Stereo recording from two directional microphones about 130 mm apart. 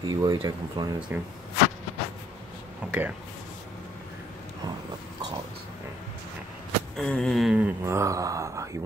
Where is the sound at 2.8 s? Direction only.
10° right (ahead or behind).